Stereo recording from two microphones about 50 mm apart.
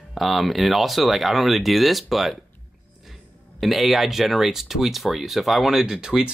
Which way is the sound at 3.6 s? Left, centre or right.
Centre.